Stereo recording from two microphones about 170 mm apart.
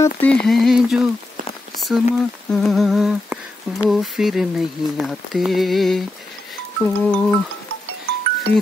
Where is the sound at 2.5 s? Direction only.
Centre (ahead or behind).